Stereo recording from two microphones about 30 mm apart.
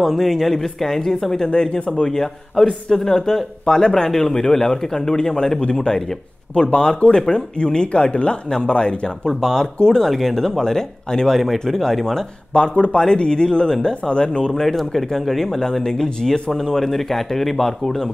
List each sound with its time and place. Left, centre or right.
0.0 s speech: centre
1.5 s speech: left
2.6 s speech: centre; by 9.3 s left
9.4 s speech: centre
12.5 s speech: left
14.5 s speech: centre